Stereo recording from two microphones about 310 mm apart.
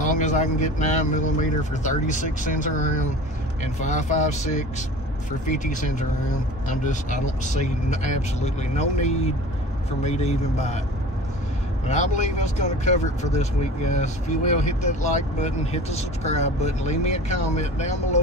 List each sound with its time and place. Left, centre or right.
0.0 s speech: left
11.9 s speech: left